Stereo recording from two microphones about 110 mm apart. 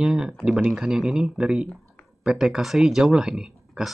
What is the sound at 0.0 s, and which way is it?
Speech, 5° right (ahead or behind).